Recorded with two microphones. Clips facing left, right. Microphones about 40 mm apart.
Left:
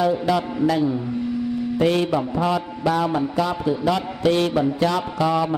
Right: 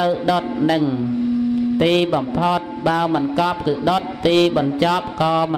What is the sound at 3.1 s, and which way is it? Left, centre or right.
A woman's voice, right.